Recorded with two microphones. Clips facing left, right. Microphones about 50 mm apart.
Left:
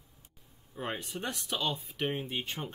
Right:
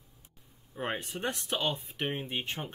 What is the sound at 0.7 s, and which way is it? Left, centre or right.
Speech, centre.